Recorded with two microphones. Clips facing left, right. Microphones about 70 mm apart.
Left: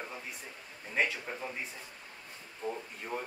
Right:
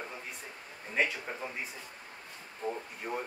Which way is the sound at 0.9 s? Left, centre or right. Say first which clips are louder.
Right 1 dB; centre.